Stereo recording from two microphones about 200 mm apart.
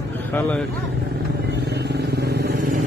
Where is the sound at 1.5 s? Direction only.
55° right (ahead or behind).